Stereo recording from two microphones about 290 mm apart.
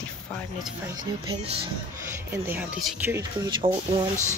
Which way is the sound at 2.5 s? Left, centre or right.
Centre.